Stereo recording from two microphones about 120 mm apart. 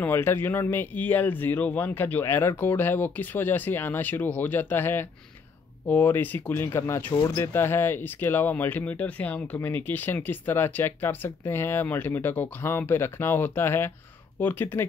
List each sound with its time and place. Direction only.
0.0 s speech: 20° left (ahead or behind)